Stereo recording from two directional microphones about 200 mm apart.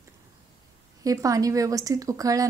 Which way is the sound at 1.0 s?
15° right (ahead or behind).